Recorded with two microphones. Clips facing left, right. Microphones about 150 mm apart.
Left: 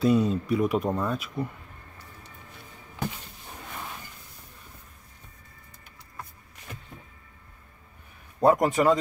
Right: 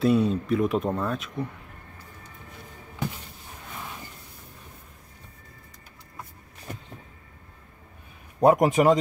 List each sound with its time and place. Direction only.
0.0 s speech: centre (ahead or behind)
8.4 s a man's voice: 20° right (ahead or behind)